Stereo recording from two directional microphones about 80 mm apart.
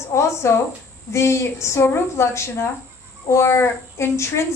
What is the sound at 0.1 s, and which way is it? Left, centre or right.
A woman's voice, left.